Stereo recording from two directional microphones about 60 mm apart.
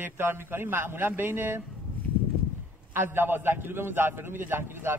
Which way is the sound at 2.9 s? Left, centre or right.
Right.